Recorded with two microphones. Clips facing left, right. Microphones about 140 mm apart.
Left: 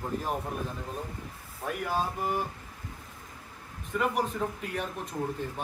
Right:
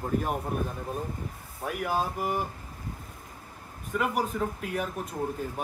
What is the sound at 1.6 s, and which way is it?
Speech, 5° right (ahead or behind).